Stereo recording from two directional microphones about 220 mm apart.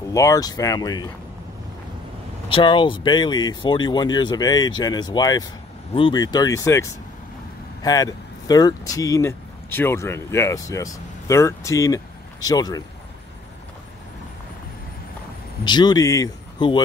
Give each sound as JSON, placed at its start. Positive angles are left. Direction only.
{"t": 0.1, "sound": "speech", "side_deg": 15}
{"t": 2.5, "sound": "speech", "side_deg": 20}
{"t": 15.6, "sound": "speech", "side_deg": 20}